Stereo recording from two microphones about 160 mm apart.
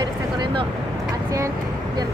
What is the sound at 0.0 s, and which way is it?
Vehicle, 30° right (ahead or behind).